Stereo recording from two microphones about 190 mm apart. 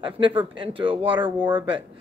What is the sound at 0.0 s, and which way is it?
Speech, 25° right (ahead or behind).